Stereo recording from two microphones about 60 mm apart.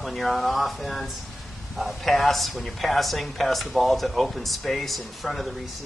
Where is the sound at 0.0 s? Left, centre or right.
Centre.